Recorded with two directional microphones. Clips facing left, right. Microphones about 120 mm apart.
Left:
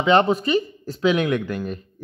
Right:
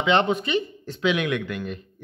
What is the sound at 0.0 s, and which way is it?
A man's voice, 40° left (ahead or behind).